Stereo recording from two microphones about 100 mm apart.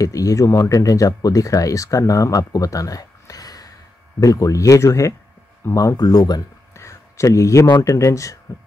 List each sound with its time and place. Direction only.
0.0 s speech: 35° left (ahead or behind)
5.9 s speech: 40° left (ahead or behind)
6.7 s a sound: 30° left (ahead or behind)
7.8 s speech: 30° left (ahead or behind)